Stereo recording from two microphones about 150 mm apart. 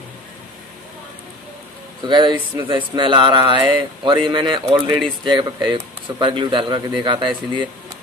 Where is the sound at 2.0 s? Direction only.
30° right (ahead or behind).